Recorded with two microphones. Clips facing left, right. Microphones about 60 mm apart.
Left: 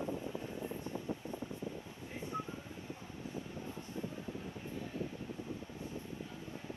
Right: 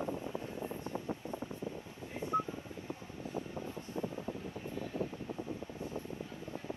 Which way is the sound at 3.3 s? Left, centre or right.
Right.